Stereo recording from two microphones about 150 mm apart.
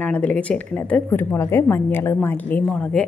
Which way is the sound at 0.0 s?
10° left (ahead or behind).